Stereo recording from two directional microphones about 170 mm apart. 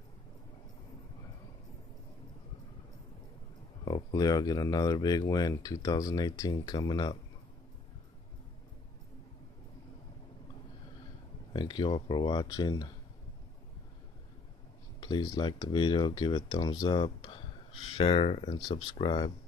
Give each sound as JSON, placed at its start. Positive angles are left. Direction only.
{"t": 3.8, "sound": "speech", "side_deg": 25}
{"t": 11.5, "sound": "speech", "side_deg": 25}
{"t": 15.0, "sound": "speech", "side_deg": 25}